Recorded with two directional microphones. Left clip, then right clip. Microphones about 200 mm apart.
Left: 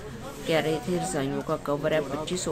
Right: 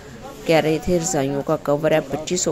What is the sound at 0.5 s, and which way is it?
Speech, 35° right (ahead or behind).